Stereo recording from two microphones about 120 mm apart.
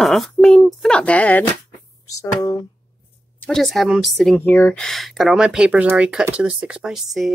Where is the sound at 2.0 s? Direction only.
30° left (ahead or behind).